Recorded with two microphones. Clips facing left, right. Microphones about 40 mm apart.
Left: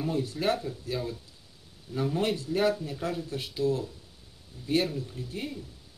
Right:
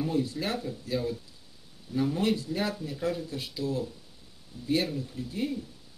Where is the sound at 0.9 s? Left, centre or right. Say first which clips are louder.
Right 4 dB; left.